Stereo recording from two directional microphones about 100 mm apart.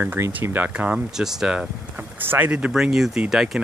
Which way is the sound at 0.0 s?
20° right (ahead or behind).